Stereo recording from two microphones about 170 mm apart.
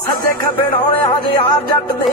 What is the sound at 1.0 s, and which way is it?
Music, 30° left (ahead or behind).